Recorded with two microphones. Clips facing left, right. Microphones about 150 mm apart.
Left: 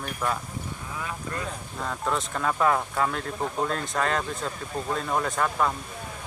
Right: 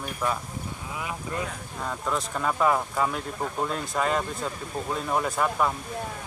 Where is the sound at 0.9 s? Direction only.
15° right (ahead or behind).